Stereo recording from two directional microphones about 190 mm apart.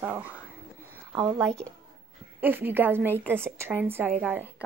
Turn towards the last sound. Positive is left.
turn(degrees=-10)  # may be behind; listen again after turning